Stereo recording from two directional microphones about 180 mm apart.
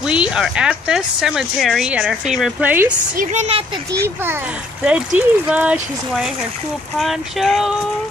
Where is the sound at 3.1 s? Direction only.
45° right (ahead or behind).